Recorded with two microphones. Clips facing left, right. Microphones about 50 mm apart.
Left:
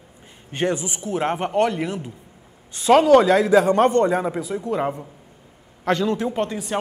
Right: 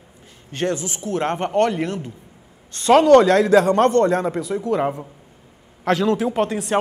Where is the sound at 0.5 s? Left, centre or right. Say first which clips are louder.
Even; centre.